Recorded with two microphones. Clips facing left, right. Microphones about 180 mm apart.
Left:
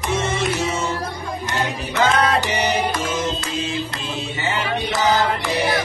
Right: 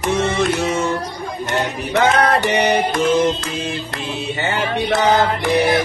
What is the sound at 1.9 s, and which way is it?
Chant, 60° right (ahead or behind).